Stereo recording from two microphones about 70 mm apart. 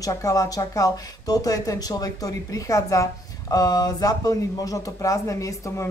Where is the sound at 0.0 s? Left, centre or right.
Left.